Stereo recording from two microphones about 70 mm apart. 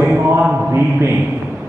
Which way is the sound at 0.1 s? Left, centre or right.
Right.